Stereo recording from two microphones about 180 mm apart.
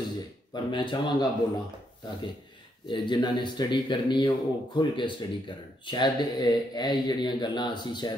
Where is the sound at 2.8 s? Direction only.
25° left (ahead or behind).